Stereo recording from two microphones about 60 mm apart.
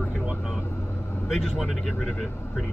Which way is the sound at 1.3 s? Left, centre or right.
Centre.